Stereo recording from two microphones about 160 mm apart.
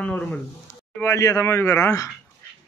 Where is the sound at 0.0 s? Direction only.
10° left (ahead or behind).